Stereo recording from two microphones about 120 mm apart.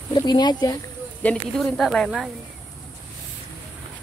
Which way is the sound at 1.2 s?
10° left (ahead or behind).